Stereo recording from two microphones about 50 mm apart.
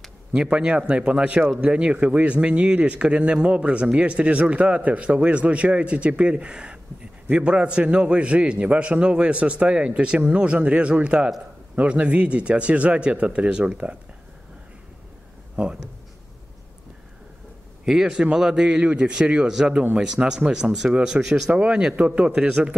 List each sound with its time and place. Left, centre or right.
0.3 s a man's voice: centre
15.5 s speech: right
17.8 s a man's voice: centre